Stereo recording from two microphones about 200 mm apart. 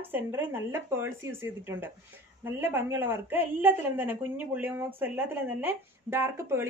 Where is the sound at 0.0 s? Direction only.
10° right (ahead or behind).